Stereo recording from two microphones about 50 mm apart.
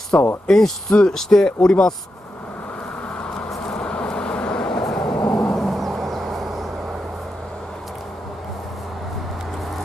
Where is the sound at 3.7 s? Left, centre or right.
Left.